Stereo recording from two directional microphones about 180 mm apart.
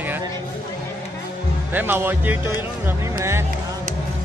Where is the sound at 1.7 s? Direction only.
10° right (ahead or behind).